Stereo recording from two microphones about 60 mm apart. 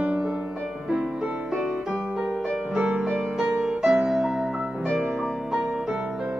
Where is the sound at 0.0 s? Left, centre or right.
Centre.